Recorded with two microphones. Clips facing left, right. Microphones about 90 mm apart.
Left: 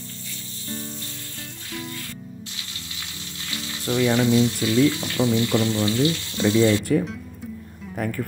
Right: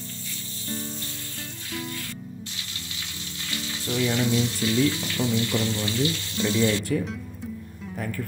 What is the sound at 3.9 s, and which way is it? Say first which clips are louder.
Frying: left 5 dB; 55° left (ahead or behind).